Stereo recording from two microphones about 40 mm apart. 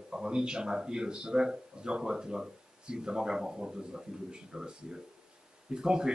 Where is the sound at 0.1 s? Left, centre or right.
Centre.